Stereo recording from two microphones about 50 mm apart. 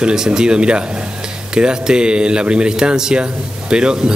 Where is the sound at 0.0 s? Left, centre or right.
Centre.